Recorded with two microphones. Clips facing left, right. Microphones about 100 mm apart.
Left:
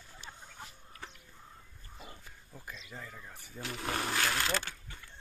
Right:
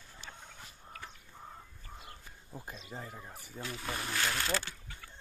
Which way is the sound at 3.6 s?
70° left (ahead or behind).